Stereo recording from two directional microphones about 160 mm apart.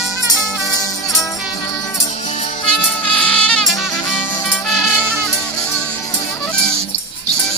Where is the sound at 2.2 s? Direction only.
45° left (ahead or behind).